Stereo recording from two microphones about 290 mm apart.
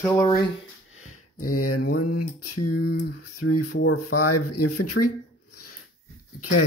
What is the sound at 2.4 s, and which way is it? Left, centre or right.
Speech, left.